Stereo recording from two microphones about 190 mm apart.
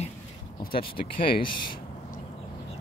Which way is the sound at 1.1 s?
50° left (ahead or behind).